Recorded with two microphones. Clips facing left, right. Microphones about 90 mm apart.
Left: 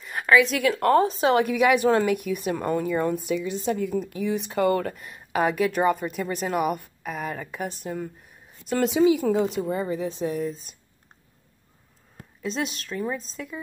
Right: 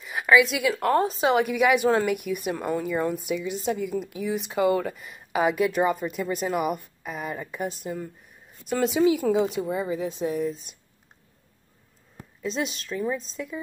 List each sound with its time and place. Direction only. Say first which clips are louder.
0.0 s a woman's voice: even; 5° right (ahead or behind)
12.4 s a woman's voice: even; centre (ahead or behind)